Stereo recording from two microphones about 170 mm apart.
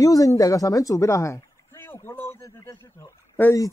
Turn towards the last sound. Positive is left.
turn(degrees=15)  # may be behind; listen again after turning